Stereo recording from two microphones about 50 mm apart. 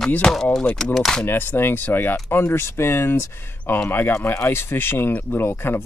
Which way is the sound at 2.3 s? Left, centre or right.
Left.